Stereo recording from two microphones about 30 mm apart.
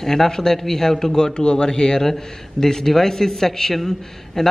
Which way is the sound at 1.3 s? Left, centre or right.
Left.